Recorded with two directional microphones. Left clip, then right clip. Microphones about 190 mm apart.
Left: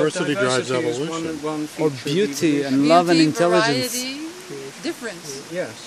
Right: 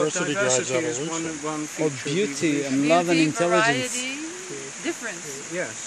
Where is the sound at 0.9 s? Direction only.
Centre (ahead or behind).